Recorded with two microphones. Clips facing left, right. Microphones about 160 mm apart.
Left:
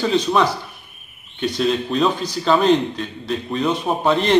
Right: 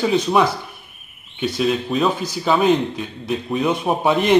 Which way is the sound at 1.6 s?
5° right (ahead or behind).